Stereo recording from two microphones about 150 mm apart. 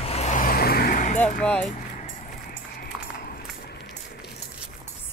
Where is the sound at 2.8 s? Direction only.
90° left.